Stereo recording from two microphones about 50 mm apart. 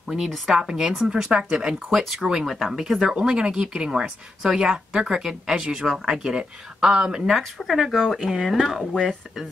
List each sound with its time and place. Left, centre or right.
0.6 s speech: centre
8.0 s speech: centre
8.3 s speech: centre